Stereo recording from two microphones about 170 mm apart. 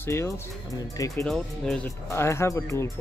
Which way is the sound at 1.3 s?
Centre (ahead or behind).